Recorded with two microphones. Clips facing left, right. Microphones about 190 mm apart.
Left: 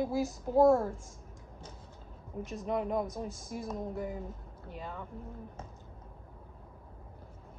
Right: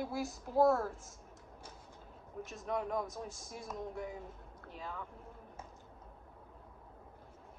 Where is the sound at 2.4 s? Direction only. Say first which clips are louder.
Left 5 dB; centre (ahead or behind).